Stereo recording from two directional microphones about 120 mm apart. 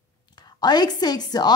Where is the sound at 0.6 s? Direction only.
35° left (ahead or behind).